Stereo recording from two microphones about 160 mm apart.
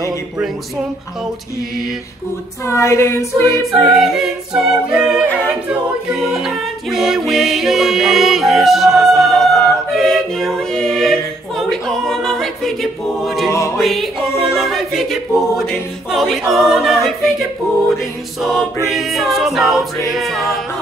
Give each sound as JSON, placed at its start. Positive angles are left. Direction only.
{"t": 2.6, "sound": "female singing", "side_deg": 20}
{"t": 3.7, "sound": "a capella", "side_deg": 0}
{"t": 13.7, "sound": "music", "side_deg": 0}
{"t": 14.5, "sound": "choir", "side_deg": 0}
{"t": 18.4, "sound": "a capella", "side_deg": 0}